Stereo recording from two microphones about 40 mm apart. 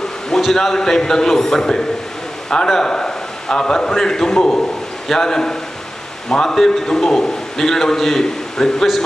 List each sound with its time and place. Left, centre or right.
0.4 s a man's voice: centre